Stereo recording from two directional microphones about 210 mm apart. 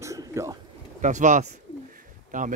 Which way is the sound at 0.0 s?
15° right (ahead or behind).